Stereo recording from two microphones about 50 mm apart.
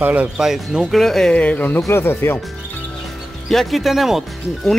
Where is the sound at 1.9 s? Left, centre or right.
Left.